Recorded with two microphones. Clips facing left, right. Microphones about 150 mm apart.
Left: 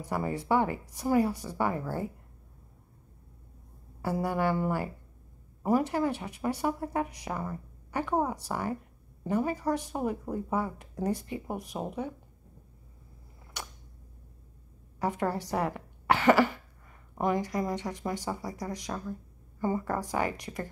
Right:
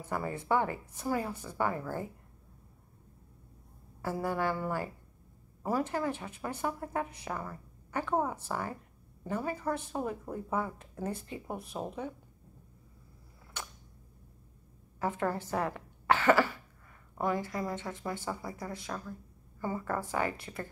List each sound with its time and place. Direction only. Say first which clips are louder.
0.0 s a woman's voice: left 4 dB; 15° left (ahead or behind)
4.0 s a woman's voice: left 3 dB; 15° left (ahead or behind)
15.0 s a woman's voice: left 2 dB; 15° left (ahead or behind)